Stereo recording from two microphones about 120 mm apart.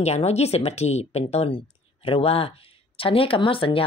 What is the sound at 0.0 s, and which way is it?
A woman's voice, 60° left (ahead or behind).